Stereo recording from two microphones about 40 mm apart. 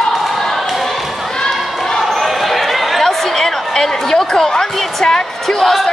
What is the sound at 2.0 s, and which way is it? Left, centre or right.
Basketball bounce, centre.